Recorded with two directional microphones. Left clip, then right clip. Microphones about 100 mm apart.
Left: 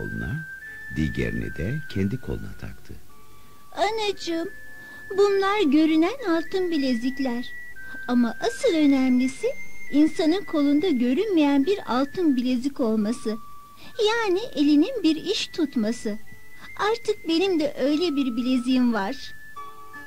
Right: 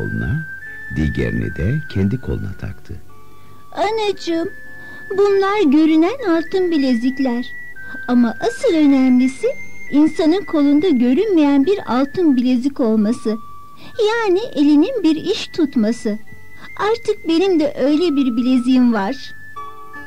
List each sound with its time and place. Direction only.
0.0 s speech: 35° left (ahead or behind)
3.7 s speech: 35° left (ahead or behind)